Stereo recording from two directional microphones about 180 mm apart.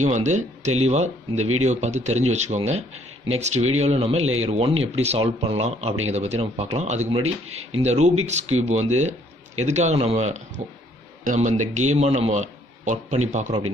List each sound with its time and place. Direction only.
0.0 s speech: 40° right (ahead or behind)